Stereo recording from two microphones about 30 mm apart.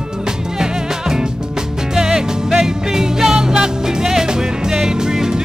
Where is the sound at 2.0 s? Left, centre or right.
Right.